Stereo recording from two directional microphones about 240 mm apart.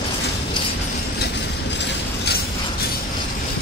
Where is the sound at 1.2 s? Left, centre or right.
Left.